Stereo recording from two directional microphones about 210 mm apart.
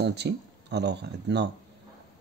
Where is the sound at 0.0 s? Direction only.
55° right (ahead or behind).